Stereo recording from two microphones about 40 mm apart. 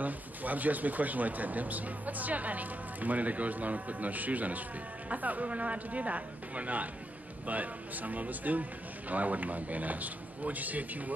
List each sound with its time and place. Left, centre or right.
0.0 s speech: right